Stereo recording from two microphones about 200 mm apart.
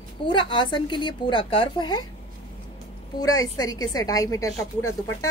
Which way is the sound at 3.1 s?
20° left (ahead or behind).